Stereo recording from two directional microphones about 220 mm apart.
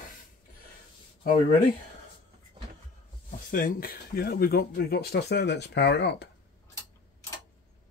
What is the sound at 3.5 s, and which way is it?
Speech, 40° left (ahead or behind).